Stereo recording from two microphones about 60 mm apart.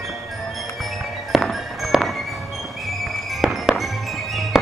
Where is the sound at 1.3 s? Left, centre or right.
Centre.